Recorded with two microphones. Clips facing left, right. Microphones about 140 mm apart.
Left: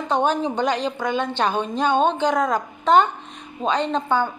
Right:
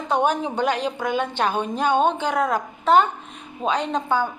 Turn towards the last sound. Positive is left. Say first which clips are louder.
# left 1 dB
turn(degrees=-10)  # may be behind; listen again after turning